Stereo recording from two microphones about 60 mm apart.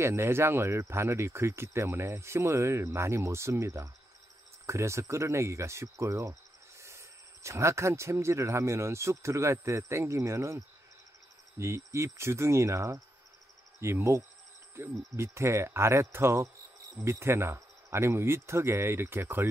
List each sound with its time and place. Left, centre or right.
0.0 s speech: right